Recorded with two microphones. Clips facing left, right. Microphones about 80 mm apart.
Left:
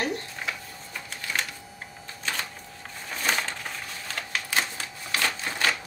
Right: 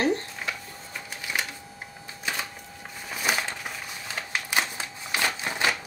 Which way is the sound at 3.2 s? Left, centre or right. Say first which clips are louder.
Even; centre.